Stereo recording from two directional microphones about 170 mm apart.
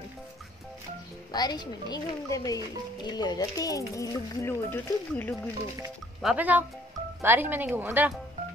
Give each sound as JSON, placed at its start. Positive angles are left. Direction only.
{"t": 1.3, "sound": "speech", "side_deg": 25}
{"t": 6.2, "sound": "speech", "side_deg": -10}